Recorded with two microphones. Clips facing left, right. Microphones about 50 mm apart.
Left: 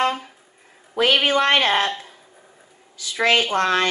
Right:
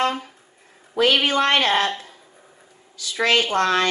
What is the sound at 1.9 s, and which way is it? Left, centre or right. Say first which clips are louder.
Speech: even; centre.